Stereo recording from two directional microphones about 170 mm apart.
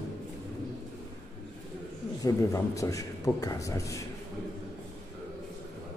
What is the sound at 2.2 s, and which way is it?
A man's voice, 20° left (ahead or behind).